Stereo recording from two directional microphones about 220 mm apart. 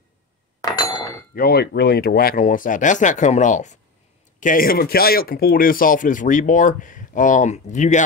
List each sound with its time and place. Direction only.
0.6 s chink: 15° left (ahead or behind)
1.3 s speech: 45° left (ahead or behind)